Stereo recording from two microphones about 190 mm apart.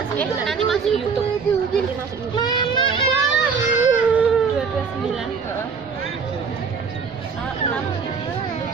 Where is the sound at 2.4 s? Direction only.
25° left (ahead or behind).